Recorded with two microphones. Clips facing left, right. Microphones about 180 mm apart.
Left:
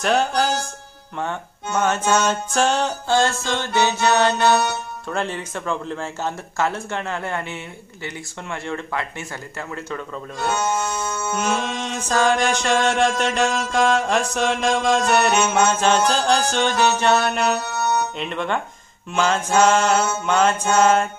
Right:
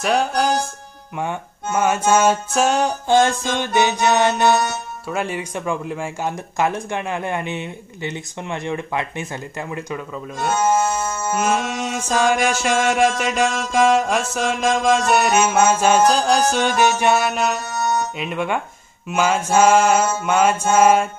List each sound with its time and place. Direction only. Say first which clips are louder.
0.0 s music: even; centre (ahead or behind)
1.1 s speech: right 2 dB; 10° right (ahead or behind)
11.3 s speech: right 3 dB; 5° right (ahead or behind)
13.7 s music: right 3 dB; 5° right (ahead or behind)
18.1 s speech: right 1 dB; 10° right (ahead or behind)